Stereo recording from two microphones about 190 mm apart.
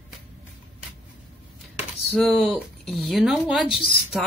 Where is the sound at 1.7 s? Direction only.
Centre (ahead or behind).